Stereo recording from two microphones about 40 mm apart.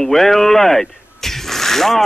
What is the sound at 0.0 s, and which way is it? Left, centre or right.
Speech, centre.